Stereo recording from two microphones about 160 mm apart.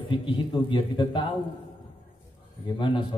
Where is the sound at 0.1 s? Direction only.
30° left (ahead or behind).